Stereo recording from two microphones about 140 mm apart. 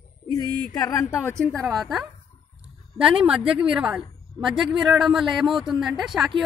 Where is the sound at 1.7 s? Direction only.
Centre (ahead or behind).